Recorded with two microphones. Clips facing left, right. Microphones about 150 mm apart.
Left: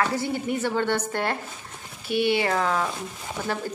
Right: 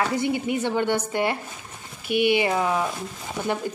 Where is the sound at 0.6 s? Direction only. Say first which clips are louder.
Right 1 dB; 15° right (ahead or behind).